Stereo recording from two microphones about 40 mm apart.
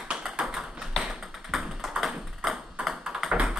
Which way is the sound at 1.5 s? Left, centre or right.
Centre.